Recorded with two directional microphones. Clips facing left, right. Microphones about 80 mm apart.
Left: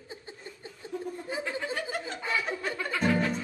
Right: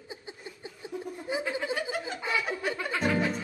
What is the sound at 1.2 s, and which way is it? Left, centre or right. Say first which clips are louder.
Snicker: right 5 dB; centre.